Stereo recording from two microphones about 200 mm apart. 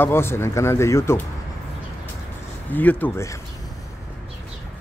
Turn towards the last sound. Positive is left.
turn(degrees=10)  # may be behind; listen again after turning